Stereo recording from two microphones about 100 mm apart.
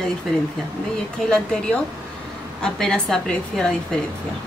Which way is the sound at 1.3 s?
10° left (ahead or behind).